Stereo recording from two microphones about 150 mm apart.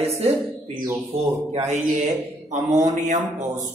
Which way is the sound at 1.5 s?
45° right (ahead or behind).